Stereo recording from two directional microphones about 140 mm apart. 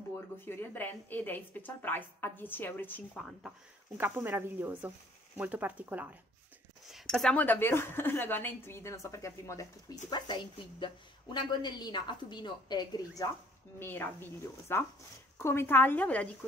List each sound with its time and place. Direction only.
0.5 s a woman's voice: 15° left (ahead or behind)
3.2 s speech: centre (ahead or behind)
4.0 s speech: 15° right (ahead or behind)
6.9 s a woman's voice: 5° left (ahead or behind); by 13.3 s 25° left (ahead or behind)
13.7 s a woman's voice: 15° left (ahead or behind)